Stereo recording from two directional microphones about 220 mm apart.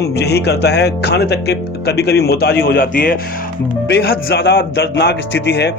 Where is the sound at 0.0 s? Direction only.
50° left (ahead or behind).